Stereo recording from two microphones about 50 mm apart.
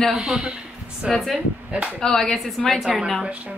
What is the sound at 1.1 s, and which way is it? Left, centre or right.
Speech, centre.